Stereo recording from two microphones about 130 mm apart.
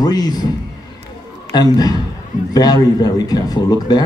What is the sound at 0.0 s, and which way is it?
Speech, 30° left (ahead or behind).